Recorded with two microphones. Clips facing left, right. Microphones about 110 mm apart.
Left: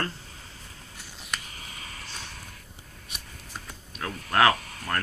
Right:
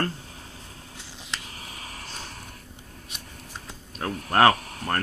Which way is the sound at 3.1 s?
25° right (ahead or behind).